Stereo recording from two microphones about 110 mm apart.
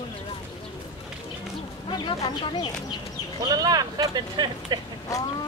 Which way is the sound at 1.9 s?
45° left (ahead or behind).